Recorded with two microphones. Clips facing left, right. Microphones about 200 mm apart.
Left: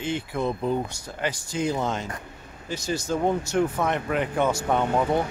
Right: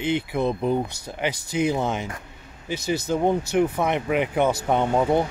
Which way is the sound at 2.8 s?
60° right (ahead or behind).